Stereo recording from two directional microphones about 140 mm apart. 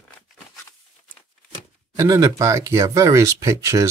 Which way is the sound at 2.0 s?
25° right (ahead or behind).